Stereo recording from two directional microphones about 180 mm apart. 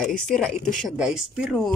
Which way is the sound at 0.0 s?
Centre (ahead or behind).